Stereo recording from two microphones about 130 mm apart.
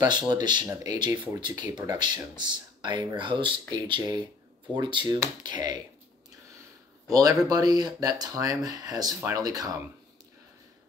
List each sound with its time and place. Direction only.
0.0 s speech: 35° right (ahead or behind)
7.1 s speech: 25° right (ahead or behind)